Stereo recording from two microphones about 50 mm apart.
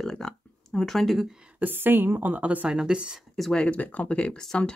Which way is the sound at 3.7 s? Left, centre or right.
Left.